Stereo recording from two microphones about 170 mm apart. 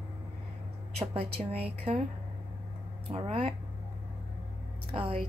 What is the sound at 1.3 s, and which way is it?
Speech, 35° right (ahead or behind).